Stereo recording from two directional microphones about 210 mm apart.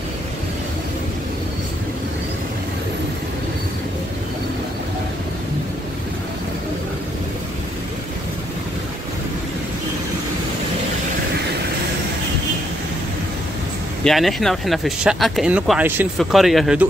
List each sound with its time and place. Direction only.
14.0 s speech: centre (ahead or behind)